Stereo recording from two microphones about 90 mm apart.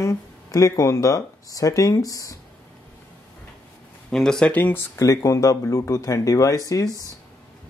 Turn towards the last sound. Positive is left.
turn(degrees=40)  # may be behind; listen again after turning